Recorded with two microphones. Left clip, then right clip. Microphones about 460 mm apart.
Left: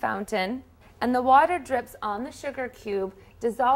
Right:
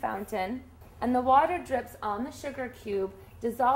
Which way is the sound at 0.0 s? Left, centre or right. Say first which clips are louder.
Left 4 dB; left.